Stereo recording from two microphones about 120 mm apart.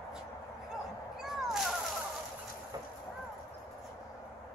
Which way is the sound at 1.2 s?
5° right (ahead or behind).